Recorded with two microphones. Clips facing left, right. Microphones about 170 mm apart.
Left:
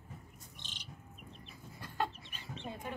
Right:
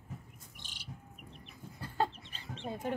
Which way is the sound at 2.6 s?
40° right (ahead or behind).